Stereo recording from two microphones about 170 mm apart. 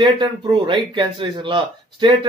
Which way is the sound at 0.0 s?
30° right (ahead or behind).